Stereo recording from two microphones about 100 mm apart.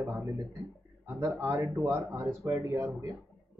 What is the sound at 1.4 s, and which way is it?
Speech, 25° right (ahead or behind).